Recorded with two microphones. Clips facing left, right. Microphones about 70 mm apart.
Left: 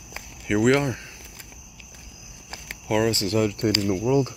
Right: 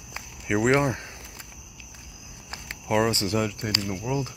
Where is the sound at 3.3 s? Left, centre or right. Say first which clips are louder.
Left 5 dB; centre.